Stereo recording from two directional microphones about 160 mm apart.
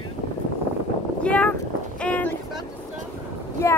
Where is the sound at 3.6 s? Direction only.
15° left (ahead or behind).